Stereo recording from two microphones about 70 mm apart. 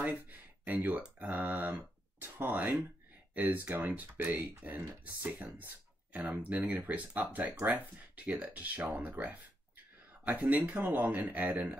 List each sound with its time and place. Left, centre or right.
0.0 s a sound: right
1.2 s speech: right
10.4 s speech: right